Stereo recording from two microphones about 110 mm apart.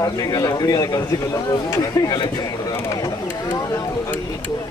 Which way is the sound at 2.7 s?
25° left (ahead or behind).